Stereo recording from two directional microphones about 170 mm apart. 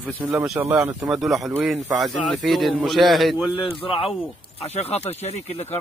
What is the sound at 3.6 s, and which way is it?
Speech, 35° left (ahead or behind).